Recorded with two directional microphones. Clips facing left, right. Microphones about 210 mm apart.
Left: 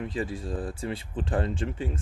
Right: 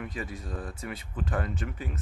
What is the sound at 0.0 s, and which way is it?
Speech, 30° left (ahead or behind).